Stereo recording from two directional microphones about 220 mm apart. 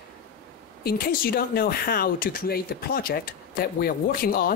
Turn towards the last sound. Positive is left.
turn(degrees=40)  # may be behind; listen again after turning